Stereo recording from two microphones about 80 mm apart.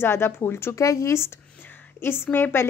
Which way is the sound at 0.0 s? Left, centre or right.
Left.